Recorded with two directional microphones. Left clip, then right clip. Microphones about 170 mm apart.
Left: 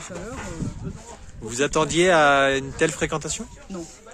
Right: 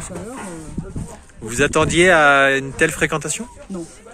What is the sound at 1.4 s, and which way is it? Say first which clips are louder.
Speech: right 5 dB; 15° left (ahead or behind).